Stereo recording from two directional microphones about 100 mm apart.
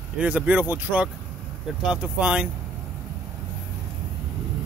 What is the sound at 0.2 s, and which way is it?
Speech, 15° right (ahead or behind).